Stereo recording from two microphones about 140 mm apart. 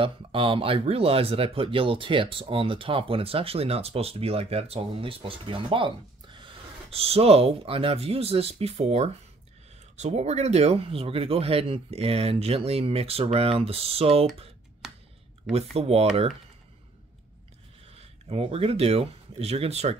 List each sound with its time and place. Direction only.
0.0 s speech: 40° right (ahead or behind)
15.5 s speech: 45° right (ahead or behind)
17.9 s speech: 45° right (ahead or behind)